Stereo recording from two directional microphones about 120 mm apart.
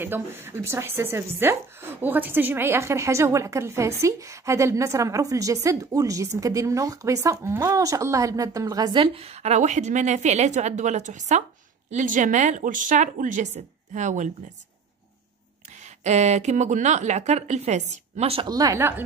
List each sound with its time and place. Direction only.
0.0 s a woman's voice: 20° right (ahead or behind); by 11.4 s 75° right (ahead or behind)
11.9 s speech: 90° right
16.0 s a woman's voice: 70° right (ahead or behind)
18.5 s a woman's voice: 30° right (ahead or behind)
18.8 s a woman's voice: 20° right (ahead or behind)